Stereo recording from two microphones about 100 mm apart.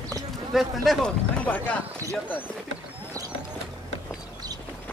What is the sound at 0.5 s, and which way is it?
Speech, 5° right (ahead or behind).